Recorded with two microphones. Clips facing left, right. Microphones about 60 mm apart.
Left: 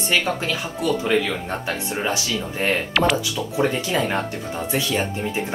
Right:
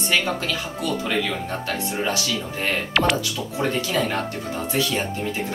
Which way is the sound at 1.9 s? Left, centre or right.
Left.